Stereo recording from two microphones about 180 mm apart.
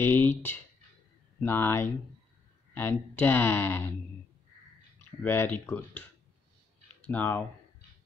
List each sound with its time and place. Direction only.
0.0 s speech: 15° left (ahead or behind)
5.2 s speech: 10° left (ahead or behind)